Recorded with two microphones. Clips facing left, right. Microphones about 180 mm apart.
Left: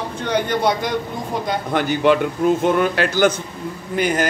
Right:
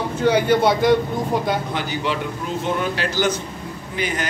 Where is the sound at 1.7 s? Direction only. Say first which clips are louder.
Left 8 dB; 55° left (ahead or behind).